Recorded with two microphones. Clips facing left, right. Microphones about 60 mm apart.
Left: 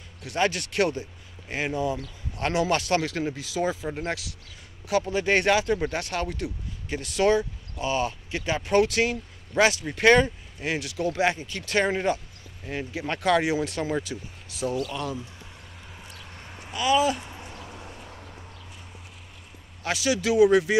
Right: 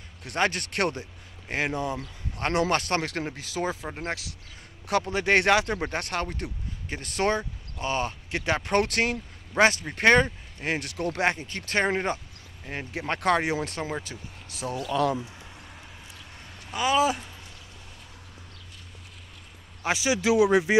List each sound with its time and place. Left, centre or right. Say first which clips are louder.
0.2 s speech: left 1 dB; right
2.3 s speech: even; right
4.8 s speech: left 1 dB; right
8.4 s speech: left 2 dB; right
16.3 s a sound: left 3 dB; left
16.7 s speech: left 1 dB; right
17.6 s a sound: left 7 dB; left
19.8 s speech: even; right